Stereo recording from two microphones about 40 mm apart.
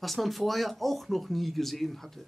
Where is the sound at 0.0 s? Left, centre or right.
Centre.